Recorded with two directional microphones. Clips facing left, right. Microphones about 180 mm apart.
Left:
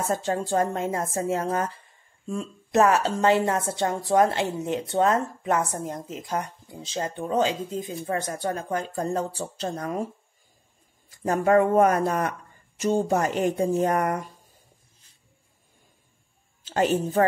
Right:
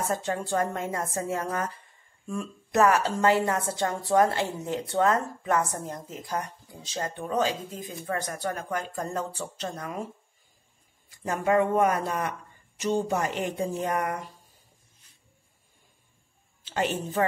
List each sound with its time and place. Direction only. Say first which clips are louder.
0.1 s a woman's voice: left 6 dB; 30° left (ahead or behind)
11.2 s speech: left 4 dB; 40° left (ahead or behind)
16.6 s a woman's voice: left 6 dB; 40° left (ahead or behind)